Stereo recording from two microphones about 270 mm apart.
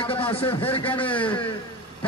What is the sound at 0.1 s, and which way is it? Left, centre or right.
Speech, left.